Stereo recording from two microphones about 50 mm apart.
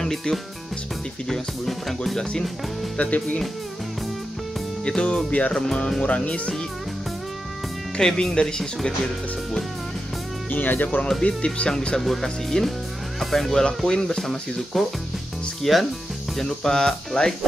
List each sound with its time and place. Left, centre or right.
0.0 s speech: centre
1.3 s music: centre
3.0 s speech: left
4.8 s speech: centre
8.0 s speech: centre
10.5 s speech: left
11.2 s speech: left
12.0 s music: centre
13.2 s speech: centre
15.6 s music: centre
16.4 s speech: centre